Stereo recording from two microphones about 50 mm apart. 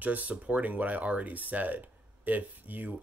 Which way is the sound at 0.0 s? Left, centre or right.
Right.